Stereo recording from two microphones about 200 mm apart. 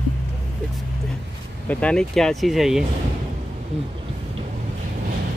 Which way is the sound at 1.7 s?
5° left (ahead or behind).